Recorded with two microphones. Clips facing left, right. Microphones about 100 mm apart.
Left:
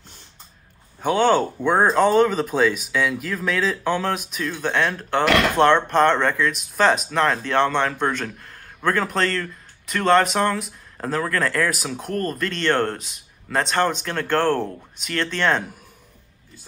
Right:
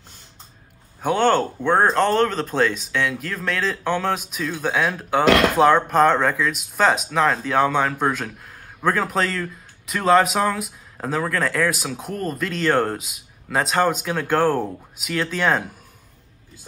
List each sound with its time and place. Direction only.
1.0 s speech: centre (ahead or behind)